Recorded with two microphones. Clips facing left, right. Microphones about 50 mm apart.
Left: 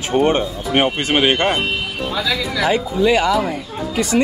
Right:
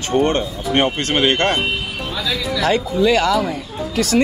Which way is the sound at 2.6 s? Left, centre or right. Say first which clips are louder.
Right 1 dB; centre.